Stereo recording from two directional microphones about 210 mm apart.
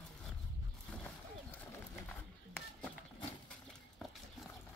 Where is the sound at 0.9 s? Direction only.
5° left (ahead or behind).